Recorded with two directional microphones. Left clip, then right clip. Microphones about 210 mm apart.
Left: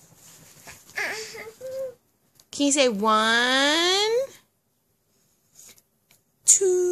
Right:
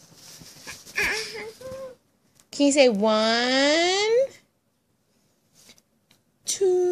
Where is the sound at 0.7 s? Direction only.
15° left (ahead or behind).